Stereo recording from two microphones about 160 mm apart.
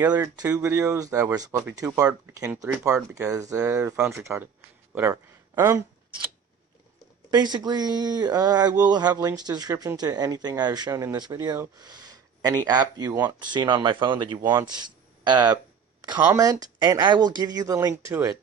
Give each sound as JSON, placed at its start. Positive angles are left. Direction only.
{"t": 0.0, "sound": "speech", "side_deg": -25}
{"t": 7.2, "sound": "speech", "side_deg": -25}